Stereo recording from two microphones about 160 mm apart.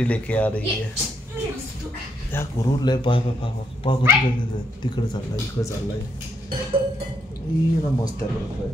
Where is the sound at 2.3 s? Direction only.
15° left (ahead or behind).